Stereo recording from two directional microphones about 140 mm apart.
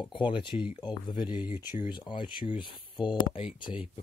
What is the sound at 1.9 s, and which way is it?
Speech, 35° left (ahead or behind).